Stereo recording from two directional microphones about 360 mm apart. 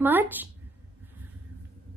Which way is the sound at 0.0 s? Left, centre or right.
Centre.